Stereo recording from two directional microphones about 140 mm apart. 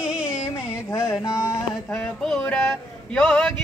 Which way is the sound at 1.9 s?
5° left (ahead or behind).